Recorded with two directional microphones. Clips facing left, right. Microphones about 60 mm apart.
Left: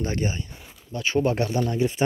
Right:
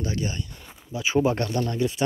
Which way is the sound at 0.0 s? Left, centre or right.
Left.